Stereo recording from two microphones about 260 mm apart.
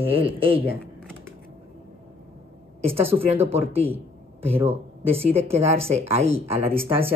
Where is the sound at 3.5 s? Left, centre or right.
Right.